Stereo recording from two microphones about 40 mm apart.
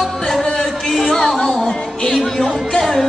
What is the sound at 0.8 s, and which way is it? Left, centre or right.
Music, centre.